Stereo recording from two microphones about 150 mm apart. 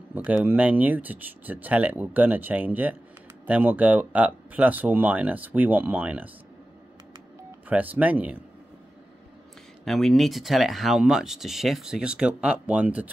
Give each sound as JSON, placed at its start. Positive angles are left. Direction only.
{"t": 0.1, "sound": "speech", "side_deg": -10}
{"t": 7.6, "sound": "speech", "side_deg": -10}
{"t": 9.8, "sound": "speech", "side_deg": 0}